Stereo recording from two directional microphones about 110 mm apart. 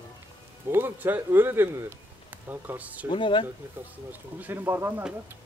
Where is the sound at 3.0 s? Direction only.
50° left (ahead or behind).